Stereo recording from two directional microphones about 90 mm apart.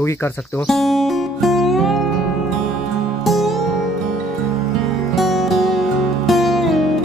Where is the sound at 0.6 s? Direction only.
Centre (ahead or behind).